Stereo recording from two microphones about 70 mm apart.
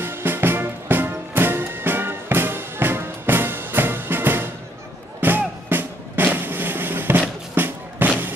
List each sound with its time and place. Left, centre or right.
0.0 s music: right